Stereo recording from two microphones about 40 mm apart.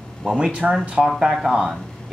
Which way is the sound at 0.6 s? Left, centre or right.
Right.